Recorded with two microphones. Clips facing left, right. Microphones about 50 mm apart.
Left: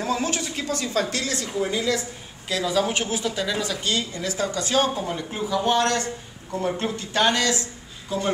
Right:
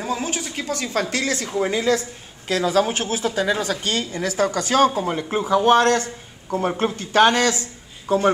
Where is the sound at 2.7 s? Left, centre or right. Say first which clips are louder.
Right 3 dB; right.